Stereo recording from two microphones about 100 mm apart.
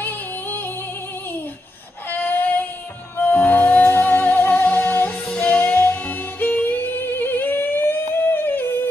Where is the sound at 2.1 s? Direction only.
20° left (ahead or behind).